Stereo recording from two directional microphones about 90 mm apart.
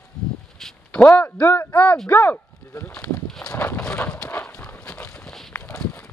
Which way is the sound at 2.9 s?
10° left (ahead or behind).